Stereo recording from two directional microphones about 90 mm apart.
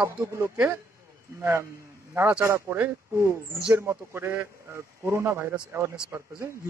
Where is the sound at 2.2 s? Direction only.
20° right (ahead or behind).